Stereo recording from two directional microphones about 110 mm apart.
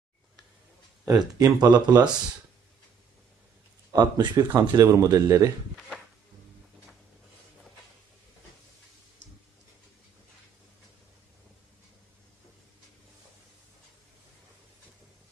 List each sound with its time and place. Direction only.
1.0 s speech: 35° right (ahead or behind)
3.9 s speech: 40° right (ahead or behind)
4.6 s speech: 30° right (ahead or behind)